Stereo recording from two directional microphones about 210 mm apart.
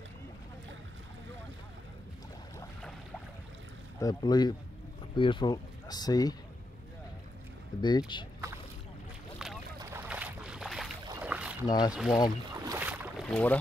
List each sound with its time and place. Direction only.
4.0 s speech: 20° left (ahead or behind)
7.8 s speech: 20° left (ahead or behind)
9.4 s boat: centre (ahead or behind)
11.6 s speech: 20° left (ahead or behind)
11.9 s speech: centre (ahead or behind)
12.5 s boat: 15° right (ahead or behind)
13.3 s speech: 5° left (ahead or behind)